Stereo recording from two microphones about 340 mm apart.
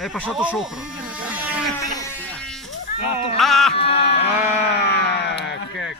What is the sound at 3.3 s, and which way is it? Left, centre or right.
Speech, centre.